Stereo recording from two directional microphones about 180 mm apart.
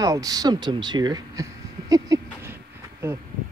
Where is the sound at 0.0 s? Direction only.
20° right (ahead or behind).